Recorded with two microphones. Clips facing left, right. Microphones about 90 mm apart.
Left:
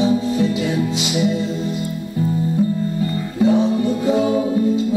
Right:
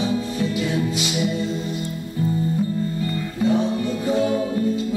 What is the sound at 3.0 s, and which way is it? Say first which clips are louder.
Music: left 5 dB; 20° left (ahead or behind).